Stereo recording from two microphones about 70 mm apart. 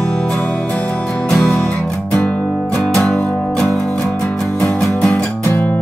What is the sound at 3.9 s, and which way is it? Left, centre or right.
Music, centre.